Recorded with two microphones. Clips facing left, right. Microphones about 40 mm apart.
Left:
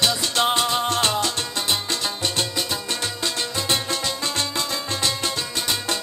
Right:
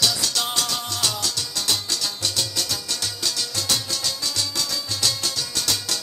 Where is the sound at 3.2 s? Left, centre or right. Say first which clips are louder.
Left 2 dB; left.